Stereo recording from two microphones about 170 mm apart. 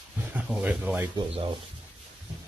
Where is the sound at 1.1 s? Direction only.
30° right (ahead or behind).